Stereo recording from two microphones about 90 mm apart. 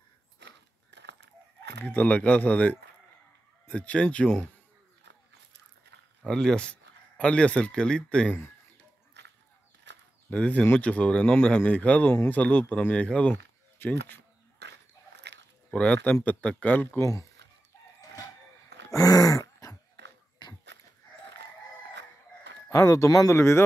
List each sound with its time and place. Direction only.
1.9 s speech: 15° left (ahead or behind)
6.2 s speech: 10° left (ahead or behind)
10.3 s speech: 15° left (ahead or behind)
15.7 s speech: 10° left (ahead or behind)
17.0 s speech: 35° left (ahead or behind)
18.9 s throat clearing: 40° left (ahead or behind)
20.4 s a sound: 55° left (ahead or behind)
22.7 s speech: 35° left (ahead or behind)